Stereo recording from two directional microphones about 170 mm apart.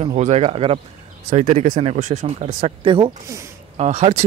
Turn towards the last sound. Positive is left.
turn(degrees=-40)  # may be behind; listen again after turning